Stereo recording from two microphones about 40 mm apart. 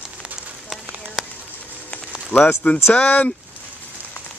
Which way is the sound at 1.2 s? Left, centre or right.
Centre.